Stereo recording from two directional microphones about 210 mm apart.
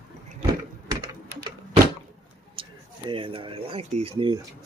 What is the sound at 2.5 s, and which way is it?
Speech, 25° right (ahead or behind).